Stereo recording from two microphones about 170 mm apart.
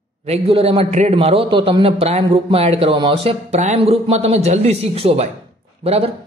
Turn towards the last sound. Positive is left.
turn(degrees=-35)  # may be behind; listen again after turning